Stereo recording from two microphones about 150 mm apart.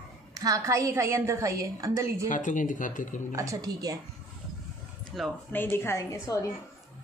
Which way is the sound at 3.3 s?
20° right (ahead or behind).